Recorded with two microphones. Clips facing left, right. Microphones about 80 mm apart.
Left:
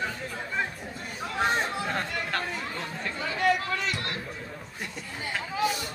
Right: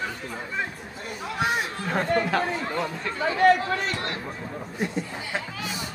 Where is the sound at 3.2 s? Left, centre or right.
Right.